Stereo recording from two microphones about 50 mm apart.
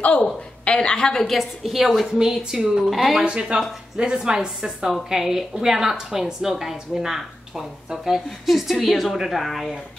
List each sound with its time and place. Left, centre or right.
0.7 s a woman's voice: centre
3.3 s a woman's voice: centre